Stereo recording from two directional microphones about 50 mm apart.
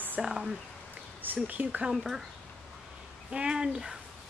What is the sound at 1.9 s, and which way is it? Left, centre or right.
Speech, centre.